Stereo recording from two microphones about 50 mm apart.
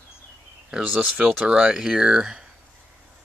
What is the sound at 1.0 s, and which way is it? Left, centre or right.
Speech, right.